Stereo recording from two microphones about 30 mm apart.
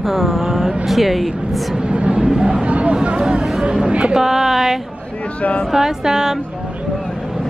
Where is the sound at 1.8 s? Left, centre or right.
Right.